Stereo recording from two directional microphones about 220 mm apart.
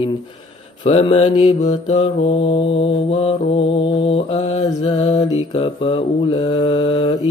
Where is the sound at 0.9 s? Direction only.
25° left (ahead or behind).